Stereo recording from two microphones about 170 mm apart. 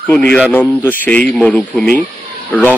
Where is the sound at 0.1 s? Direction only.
10° left (ahead or behind).